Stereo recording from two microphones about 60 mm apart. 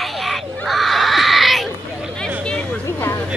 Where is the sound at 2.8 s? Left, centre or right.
Left.